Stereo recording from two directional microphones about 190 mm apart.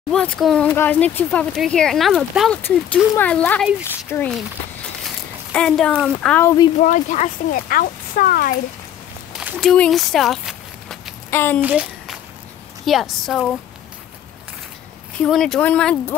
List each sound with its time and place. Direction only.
0.1 s speech: 5° left (ahead or behind)
5.5 s speech: 5° left (ahead or behind)
6.4 s speech: 20° left (ahead or behind)
6.8 s speech: 40° left (ahead or behind)
9.3 s a sound: 10° right (ahead or behind)
9.6 s speech: centre (ahead or behind)
11.2 s a woman's voice: 10° left (ahead or behind)
11.6 s a sound: 5° right (ahead or behind)
12.8 s speech: centre (ahead or behind)
15.2 s speech: centre (ahead or behind)